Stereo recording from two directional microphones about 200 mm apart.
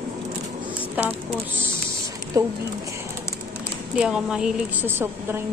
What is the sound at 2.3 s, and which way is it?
Speech, 15° right (ahead or behind).